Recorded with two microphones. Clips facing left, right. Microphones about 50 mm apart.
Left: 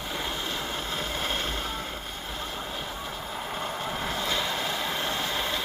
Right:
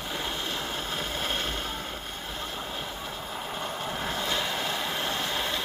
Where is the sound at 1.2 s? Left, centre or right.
Left.